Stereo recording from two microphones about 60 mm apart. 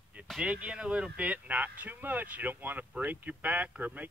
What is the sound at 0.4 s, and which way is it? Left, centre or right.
Speech, right.